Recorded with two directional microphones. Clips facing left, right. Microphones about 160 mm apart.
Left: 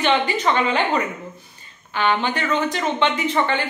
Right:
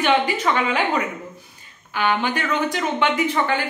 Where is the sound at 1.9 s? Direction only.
10° right (ahead or behind).